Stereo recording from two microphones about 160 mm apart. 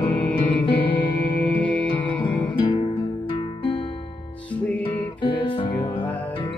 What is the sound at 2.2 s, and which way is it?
Music, 35° left (ahead or behind).